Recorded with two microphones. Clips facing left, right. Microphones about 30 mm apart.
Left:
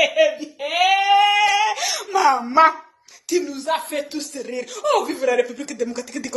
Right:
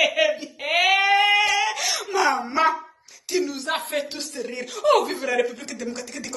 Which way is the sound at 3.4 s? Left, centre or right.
Right.